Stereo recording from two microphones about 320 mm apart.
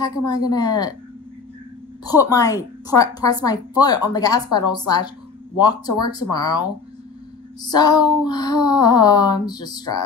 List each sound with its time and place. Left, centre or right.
0.0 s a woman's voice: centre
2.0 s a woman's voice: centre